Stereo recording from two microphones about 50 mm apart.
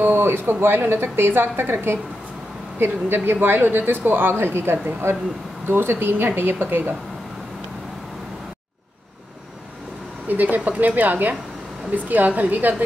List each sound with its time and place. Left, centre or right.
0.0 s a woman's voice: right
10.2 s a woman's voice: right